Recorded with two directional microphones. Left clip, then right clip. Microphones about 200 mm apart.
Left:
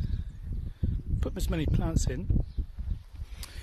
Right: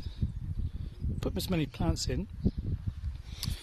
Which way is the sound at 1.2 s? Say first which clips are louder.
Right 1 dB; 15° right (ahead or behind).